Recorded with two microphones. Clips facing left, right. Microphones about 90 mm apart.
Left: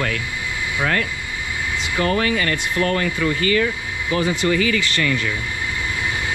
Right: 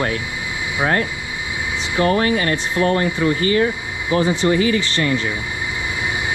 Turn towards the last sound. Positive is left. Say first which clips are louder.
# right 2 dB
turn(degrees=-25)  # may be behind; listen again after turning